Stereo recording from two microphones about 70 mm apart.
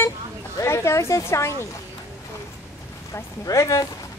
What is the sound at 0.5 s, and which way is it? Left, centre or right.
Speech, left.